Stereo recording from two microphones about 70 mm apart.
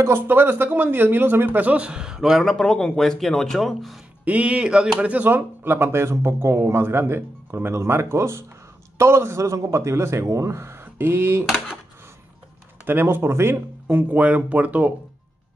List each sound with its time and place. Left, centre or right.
0.0 s speech: right; by 2.5 s centre
2.5 s speech: centre
4.2 s speech: right
12.8 s speech: right